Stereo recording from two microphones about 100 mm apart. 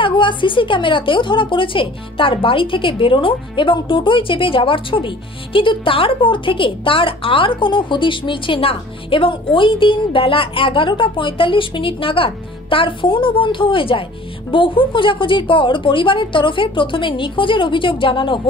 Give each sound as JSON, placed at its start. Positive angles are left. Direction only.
{"t": 0.0, "sound": "a woman's voice", "side_deg": 55}